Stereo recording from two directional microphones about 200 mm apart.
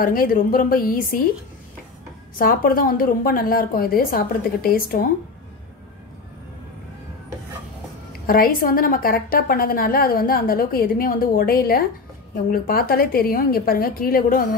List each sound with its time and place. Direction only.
0.0 s a woman's voice: 45° left (ahead or behind)
2.3 s a woman's voice: 45° left (ahead or behind)
8.3 s a woman's voice: 45° left (ahead or behind)